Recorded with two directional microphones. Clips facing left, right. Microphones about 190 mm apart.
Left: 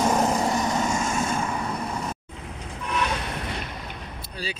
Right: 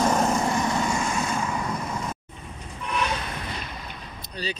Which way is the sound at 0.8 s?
45° left (ahead or behind).